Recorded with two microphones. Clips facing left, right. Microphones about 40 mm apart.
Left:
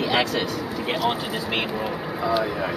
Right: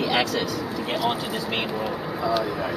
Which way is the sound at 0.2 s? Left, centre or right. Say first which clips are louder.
Left 1 dB; centre.